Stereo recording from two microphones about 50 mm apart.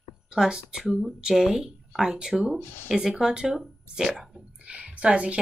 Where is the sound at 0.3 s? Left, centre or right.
Centre.